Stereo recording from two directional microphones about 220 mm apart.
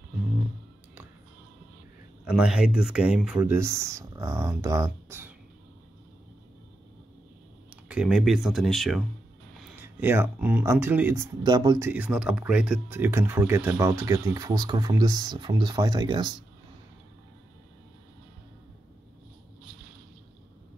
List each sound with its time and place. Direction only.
2.2 s speech: 5° right (ahead or behind)
7.9 s speech: 5° right (ahead or behind); by 11.9 s 20° right (ahead or behind)
11.9 s speech: 5° right (ahead or behind)